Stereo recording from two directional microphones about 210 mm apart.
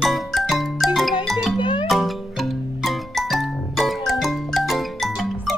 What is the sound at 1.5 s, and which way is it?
Music, 20° left (ahead or behind).